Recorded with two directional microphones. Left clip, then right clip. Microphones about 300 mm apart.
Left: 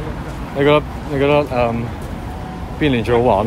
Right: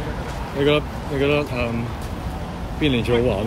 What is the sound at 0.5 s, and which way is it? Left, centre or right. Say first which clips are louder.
Speech: left 5 dB; left.